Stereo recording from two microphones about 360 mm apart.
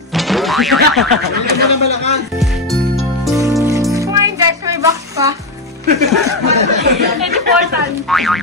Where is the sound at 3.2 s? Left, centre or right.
Centre.